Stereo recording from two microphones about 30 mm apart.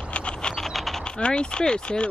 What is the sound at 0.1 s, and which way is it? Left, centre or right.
Mechanisms, left.